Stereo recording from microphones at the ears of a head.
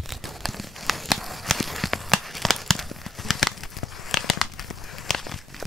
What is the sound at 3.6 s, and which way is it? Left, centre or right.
Crumpling, left.